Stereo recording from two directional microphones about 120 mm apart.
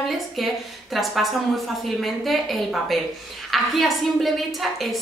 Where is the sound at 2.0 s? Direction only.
Centre (ahead or behind).